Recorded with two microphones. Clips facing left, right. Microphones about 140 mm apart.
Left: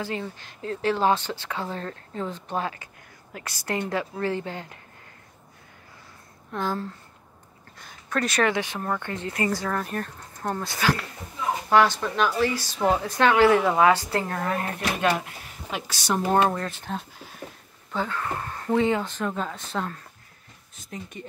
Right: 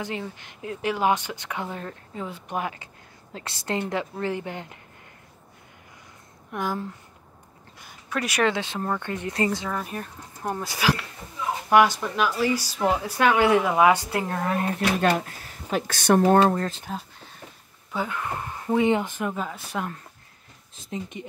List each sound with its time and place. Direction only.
0.0 s a woman's voice: 20° right (ahead or behind)
6.5 s speech: 15° right (ahead or behind)
8.1 s speech: 10° right (ahead or behind)
8.5 s a woman's voice: 20° right (ahead or behind)
9.7 s speech: 5° right (ahead or behind)
15.0 s speech: 45° right (ahead or behind)
16.3 s speech: 35° right (ahead or behind)
17.9 s speech: 15° right (ahead or behind)
20.7 s a woman's voice: 25° right (ahead or behind)